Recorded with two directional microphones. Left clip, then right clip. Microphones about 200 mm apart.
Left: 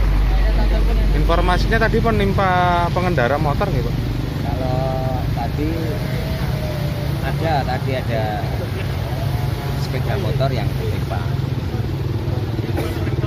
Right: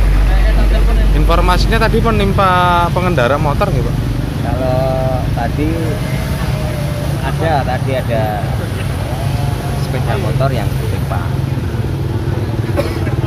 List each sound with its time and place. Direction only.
1.3 s speech: 5° right (ahead or behind)
7.5 s speech: centre (ahead or behind)